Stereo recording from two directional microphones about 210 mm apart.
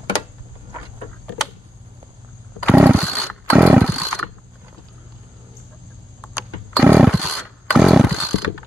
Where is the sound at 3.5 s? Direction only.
5° right (ahead or behind).